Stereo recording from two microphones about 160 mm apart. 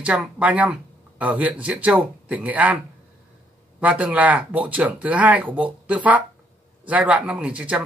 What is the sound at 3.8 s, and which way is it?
Speech, 10° right (ahead or behind).